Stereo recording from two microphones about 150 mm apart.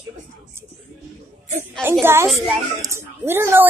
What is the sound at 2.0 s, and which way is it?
Speech, 15° right (ahead or behind).